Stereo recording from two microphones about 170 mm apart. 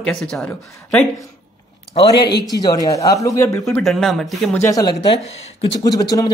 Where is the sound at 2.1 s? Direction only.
80° left.